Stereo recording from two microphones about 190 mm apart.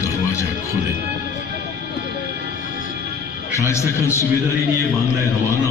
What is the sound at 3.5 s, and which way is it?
Speech, 15° left (ahead or behind).